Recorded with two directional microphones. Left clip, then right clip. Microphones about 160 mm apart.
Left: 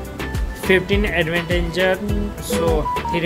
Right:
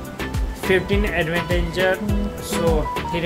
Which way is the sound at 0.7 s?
15° left (ahead or behind).